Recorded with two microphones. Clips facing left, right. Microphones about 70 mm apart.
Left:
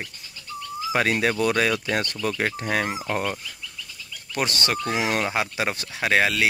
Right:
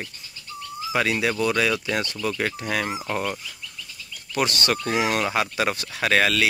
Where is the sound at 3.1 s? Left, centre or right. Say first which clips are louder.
Even; centre.